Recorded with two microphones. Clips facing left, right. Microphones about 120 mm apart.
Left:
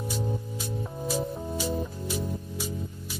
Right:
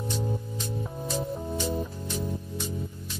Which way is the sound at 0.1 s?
5° left (ahead or behind).